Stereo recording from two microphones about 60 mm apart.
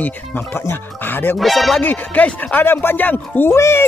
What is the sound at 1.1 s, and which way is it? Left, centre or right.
Speech, left.